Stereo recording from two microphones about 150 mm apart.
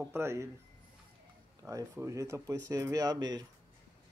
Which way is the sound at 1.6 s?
20° right (ahead or behind).